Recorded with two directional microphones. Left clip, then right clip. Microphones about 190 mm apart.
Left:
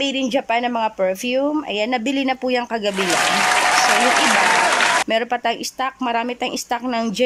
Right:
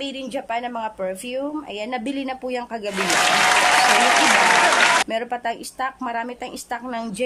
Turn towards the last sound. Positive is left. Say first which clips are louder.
# left 6 dB
turn(degrees=0)  # may be behind; listen again after turning